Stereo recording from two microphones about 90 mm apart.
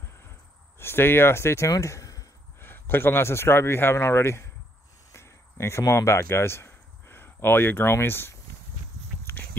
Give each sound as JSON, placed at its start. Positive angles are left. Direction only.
{"t": 0.7, "sound": "speech", "side_deg": 25}
{"t": 2.6, "sound": "a man's voice", "side_deg": 25}
{"t": 9.2, "sound": "a sound", "side_deg": 20}